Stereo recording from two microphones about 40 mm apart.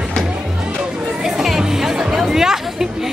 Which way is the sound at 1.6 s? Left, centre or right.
Centre.